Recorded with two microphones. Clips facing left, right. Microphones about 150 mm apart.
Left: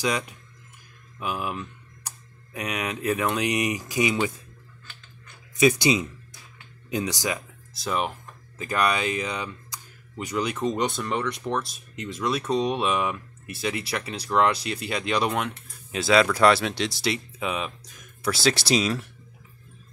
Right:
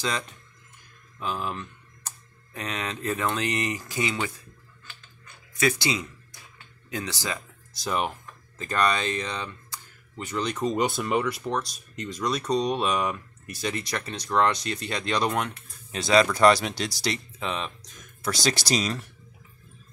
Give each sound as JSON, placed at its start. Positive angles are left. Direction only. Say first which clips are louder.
{"t": 0.0, "sound": "speech", "louder": "left 3 dB", "side_deg": 15}
{"t": 5.6, "sound": "speech", "louder": "left 6 dB", "side_deg": 20}
{"t": 7.7, "sound": "speech", "louder": "even", "side_deg": 0}